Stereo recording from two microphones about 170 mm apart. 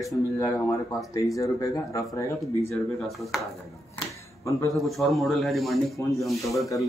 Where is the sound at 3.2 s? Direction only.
Centre (ahead or behind).